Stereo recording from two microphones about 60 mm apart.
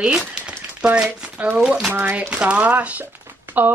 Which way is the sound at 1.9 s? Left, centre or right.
Right.